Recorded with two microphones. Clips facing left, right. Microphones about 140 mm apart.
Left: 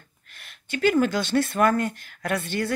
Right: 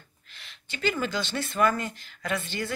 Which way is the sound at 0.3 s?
55° left (ahead or behind).